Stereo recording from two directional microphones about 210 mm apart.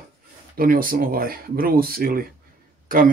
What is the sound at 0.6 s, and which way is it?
Speech, 40° right (ahead or behind).